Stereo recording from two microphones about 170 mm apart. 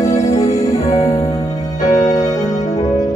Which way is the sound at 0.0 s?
45° left (ahead or behind).